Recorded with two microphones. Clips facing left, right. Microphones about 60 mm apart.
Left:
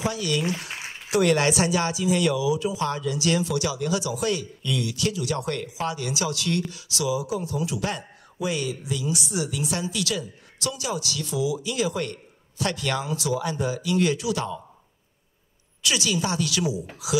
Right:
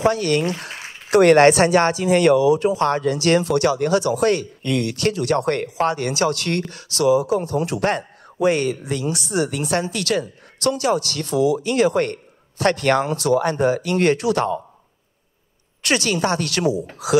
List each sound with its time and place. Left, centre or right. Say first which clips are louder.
0.0 s a man's voice: right 8 dB; right
15.8 s a man's voice: right 5 dB; right